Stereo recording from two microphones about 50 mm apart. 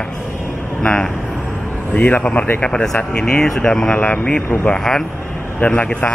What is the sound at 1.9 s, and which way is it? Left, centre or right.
Speech, left.